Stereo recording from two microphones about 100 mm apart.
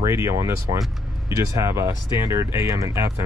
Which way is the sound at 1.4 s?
30° right (ahead or behind).